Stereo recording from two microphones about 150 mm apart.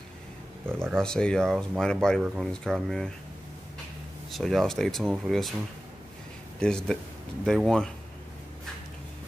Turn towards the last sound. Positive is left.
turn(degrees=0)  # may be behind; listen again after turning